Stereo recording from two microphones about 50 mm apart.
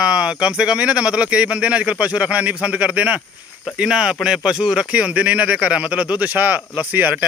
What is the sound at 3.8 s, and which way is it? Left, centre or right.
Speech, centre.